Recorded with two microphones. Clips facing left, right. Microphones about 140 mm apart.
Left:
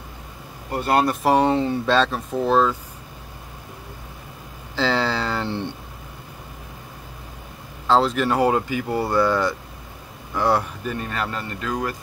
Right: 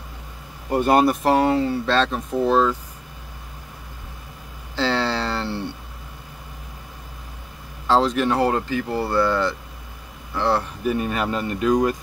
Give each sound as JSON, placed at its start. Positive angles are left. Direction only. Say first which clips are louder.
{"t": 0.7, "sound": "speech", "louder": "right 3 dB", "side_deg": -15}
{"t": 1.2, "sound": "speech", "louder": "even", "side_deg": 15}
{"t": 1.9, "sound": "speech", "louder": "left 1 dB", "side_deg": 5}
{"t": 4.7, "sound": "a sound", "louder": "even", "side_deg": 5}
{"t": 7.8, "sound": "speech", "louder": "even", "side_deg": 5}
{"t": 10.8, "sound": "speech", "louder": "right 5 dB", "side_deg": -10}